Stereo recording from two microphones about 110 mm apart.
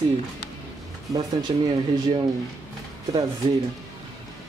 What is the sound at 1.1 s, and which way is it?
Speech, 40° right (ahead or behind).